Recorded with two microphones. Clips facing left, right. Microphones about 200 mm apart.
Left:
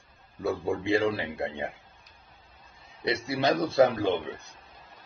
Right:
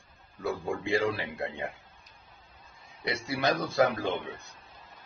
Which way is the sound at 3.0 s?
30° left (ahead or behind).